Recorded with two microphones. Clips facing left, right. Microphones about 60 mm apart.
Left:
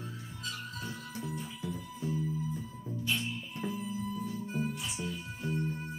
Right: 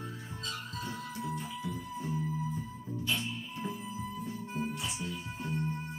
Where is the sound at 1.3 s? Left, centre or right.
Right.